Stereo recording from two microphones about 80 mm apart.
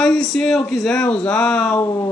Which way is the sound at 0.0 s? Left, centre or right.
Centre.